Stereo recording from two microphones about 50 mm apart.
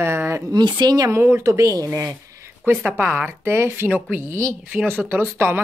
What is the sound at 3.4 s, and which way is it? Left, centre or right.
Speech, right.